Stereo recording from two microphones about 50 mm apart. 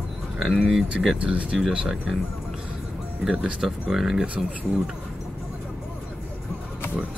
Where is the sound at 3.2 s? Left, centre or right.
Centre.